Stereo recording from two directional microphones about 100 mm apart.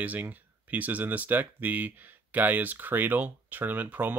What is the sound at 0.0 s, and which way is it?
Speech, 15° right (ahead or behind).